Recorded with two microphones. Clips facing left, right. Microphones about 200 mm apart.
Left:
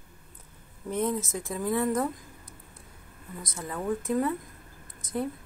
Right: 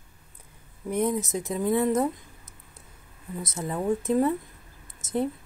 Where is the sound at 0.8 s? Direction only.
15° right (ahead or behind).